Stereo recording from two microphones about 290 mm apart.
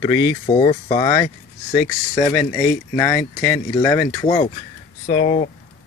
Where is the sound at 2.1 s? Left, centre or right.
Centre; by 5.5 s left.